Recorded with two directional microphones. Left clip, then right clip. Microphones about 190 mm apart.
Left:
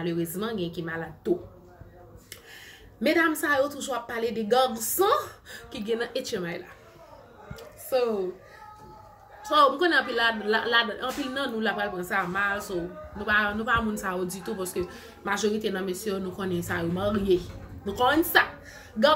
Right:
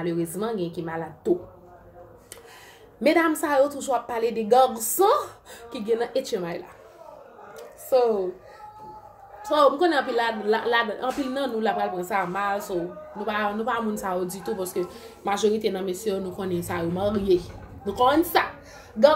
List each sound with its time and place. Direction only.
0.0 s a woman's voice: centre (ahead or behind)
3.0 s a woman's voice: centre (ahead or behind)
7.9 s a woman's voice: centre (ahead or behind)
9.4 s a woman's voice: centre (ahead or behind)